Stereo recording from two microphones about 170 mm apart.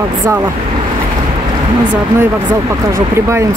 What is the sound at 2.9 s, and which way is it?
Speech, 15° right (ahead or behind).